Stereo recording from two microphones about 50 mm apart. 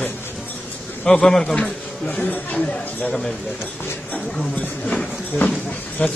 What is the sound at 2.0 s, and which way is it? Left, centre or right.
Speech, left.